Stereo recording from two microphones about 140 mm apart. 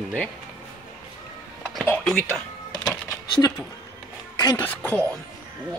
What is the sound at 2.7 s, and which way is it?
Music, 30° left (ahead or behind).